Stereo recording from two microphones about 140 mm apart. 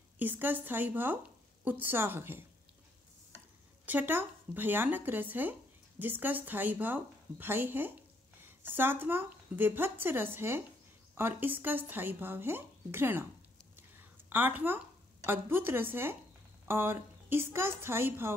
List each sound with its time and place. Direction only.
0.2 s speech: 15° right (ahead or behind)
3.8 s speech: 10° right (ahead or behind)
13.7 s a sound: 15° right (ahead or behind)
15.2 s speech: 15° right (ahead or behind)